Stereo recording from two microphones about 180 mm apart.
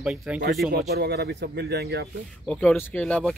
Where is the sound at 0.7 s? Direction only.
65° right (ahead or behind).